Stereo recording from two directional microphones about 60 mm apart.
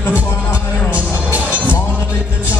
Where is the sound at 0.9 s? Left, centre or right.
Right.